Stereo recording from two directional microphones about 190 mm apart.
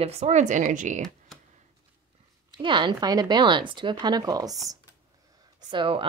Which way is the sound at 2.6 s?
25° right (ahead or behind).